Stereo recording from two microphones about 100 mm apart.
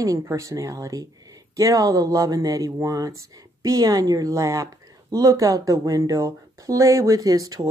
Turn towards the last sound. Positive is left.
turn(degrees=-35)  # may be behind; listen again after turning